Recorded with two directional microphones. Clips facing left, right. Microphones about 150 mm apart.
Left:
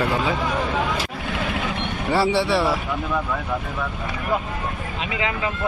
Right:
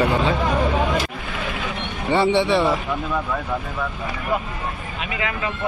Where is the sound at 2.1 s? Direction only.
5° left (ahead or behind).